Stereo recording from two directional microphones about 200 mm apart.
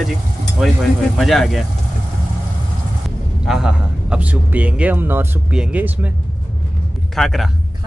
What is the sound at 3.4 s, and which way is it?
Speech, 5° right (ahead or behind).